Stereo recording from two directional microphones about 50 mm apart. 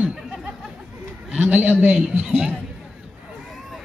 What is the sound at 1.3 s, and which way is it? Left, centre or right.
Speech, right.